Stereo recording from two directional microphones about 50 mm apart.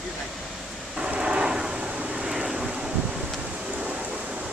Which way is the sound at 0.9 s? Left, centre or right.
Centre.